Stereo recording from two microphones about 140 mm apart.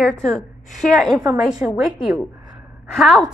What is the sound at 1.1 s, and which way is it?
Speech, 25° right (ahead or behind).